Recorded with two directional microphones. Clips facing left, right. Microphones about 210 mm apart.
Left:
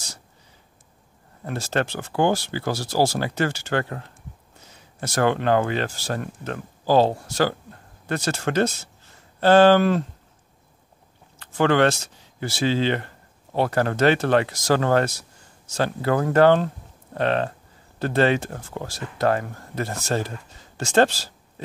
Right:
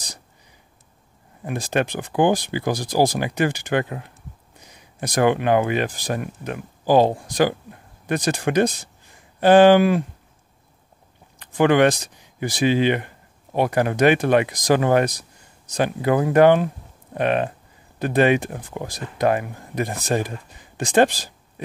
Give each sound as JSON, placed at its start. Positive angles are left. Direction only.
{"t": 1.4, "sound": "speech", "side_deg": -15}
{"t": 11.3, "sound": "speech", "side_deg": -15}